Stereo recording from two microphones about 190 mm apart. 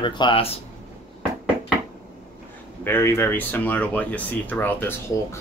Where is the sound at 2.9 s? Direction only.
10° left (ahead or behind).